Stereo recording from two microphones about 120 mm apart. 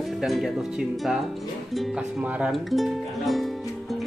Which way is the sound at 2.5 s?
Centre (ahead or behind).